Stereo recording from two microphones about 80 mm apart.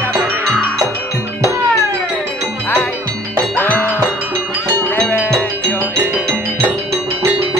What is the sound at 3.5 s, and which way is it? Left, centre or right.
Music, left.